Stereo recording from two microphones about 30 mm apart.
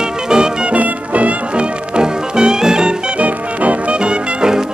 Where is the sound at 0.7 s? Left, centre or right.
Right.